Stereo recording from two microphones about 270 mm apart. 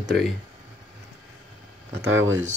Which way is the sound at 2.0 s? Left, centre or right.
Right.